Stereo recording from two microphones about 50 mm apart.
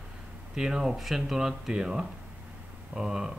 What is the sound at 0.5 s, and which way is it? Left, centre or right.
Speech, centre.